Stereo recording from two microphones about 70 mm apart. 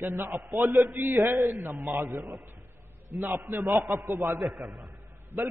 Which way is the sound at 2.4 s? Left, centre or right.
Right.